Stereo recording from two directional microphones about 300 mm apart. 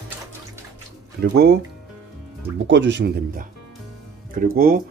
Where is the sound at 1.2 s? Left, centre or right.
Right.